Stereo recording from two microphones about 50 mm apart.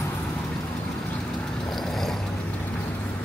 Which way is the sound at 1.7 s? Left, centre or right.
Centre.